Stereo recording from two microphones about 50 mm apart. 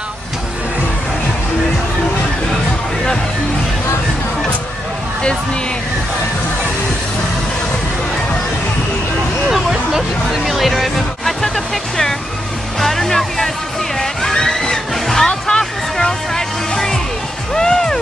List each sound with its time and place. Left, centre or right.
9.5 s speech: centre
13.9 s music: centre